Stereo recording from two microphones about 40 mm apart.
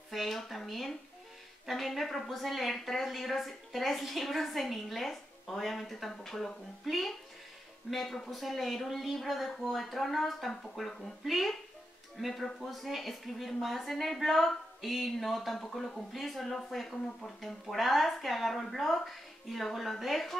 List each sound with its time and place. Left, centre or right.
0.1 s a woman's voice: centre